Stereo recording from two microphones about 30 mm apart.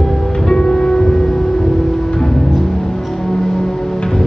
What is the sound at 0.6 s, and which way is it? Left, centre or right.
Music, left.